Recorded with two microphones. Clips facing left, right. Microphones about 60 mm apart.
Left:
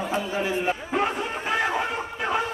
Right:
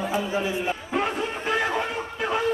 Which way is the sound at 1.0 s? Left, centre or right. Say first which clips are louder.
Right 2 dB; centre.